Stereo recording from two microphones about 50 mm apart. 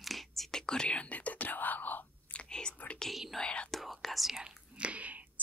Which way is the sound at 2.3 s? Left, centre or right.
Centre.